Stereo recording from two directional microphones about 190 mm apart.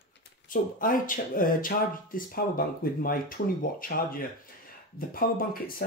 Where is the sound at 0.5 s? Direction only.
45° left (ahead or behind).